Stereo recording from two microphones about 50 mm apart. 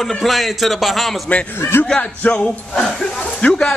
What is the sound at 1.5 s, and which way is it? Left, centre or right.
Speech, left.